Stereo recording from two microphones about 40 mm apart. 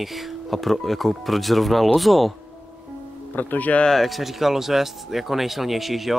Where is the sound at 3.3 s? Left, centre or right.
Left.